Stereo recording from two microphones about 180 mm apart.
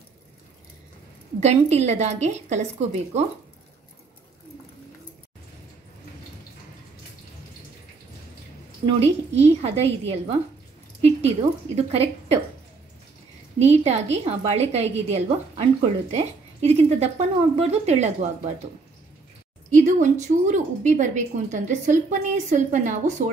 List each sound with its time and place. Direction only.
1.4 s a woman's voice: 35° right (ahead or behind)
8.8 s a woman's voice: 35° right (ahead or behind)
13.6 s a woman's voice: 35° right (ahead or behind)
19.7 s a woman's voice: 40° right (ahead or behind)